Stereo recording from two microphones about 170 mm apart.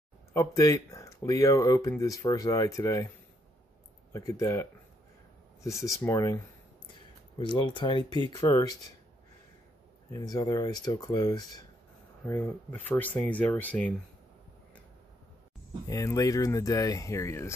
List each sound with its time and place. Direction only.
0.3 s speech: 20° left (ahead or behind)
4.1 s speech: 20° left (ahead or behind)
10.1 s speech: 20° left (ahead or behind)
12.3 s speech: 10° left (ahead or behind)
15.9 s speech: 20° left (ahead or behind)